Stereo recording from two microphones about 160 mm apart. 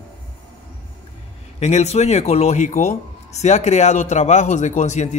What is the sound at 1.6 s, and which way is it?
Speech, 40° left (ahead or behind).